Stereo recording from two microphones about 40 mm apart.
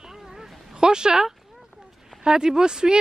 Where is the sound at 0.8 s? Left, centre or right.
Centre.